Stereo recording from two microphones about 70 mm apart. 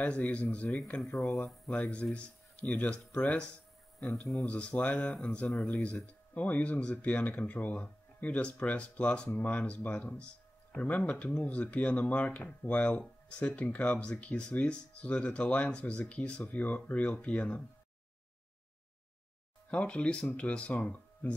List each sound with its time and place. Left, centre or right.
0.0 s speech: left; by 1.6 s centre
1.7 s speech: centre
4.5 s speech: centre
4.9 s speech: centre
6.3 s speech: centre
19.7 s speech: centre